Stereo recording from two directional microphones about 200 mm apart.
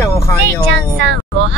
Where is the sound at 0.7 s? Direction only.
60° right (ahead or behind).